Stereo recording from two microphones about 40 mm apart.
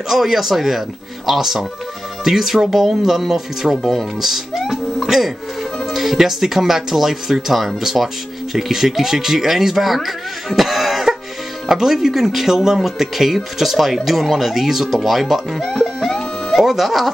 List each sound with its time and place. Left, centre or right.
0.1 s speech: centre
15.0 s music: centre
16.5 s speech: centre